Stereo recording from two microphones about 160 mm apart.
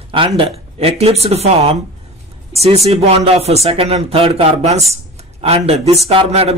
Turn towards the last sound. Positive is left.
turn(degrees=-40)  # may be behind; listen again after turning